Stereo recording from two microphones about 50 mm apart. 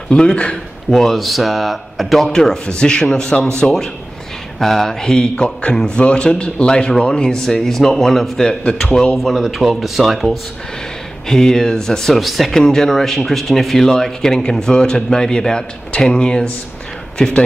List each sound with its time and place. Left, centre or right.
0.1 s speech: left
0.8 s speech: centre
2.3 s speech: centre
9.1 s speech: centre
11.2 s speech: centre